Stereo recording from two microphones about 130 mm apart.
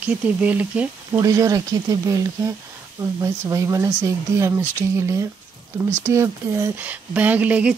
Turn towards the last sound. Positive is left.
turn(degrees=-10)  # may be behind; listen again after turning